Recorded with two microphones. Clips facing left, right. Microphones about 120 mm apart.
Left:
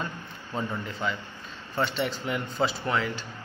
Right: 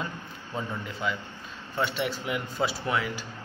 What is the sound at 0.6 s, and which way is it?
A man's voice, 5° right (ahead or behind).